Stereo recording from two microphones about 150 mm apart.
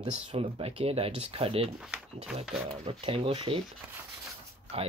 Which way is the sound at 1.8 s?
5° right (ahead or behind).